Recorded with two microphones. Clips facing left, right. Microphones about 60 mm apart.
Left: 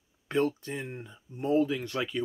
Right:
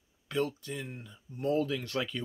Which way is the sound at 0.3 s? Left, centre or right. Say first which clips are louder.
Left 4 dB; left.